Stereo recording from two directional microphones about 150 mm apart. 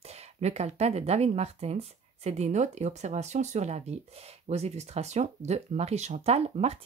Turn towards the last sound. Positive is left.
turn(degrees=-45)  # may be behind; listen again after turning